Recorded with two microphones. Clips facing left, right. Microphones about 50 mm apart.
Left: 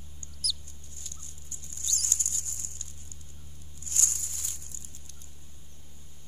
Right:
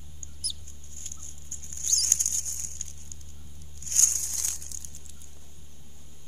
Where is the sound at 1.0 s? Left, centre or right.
Right.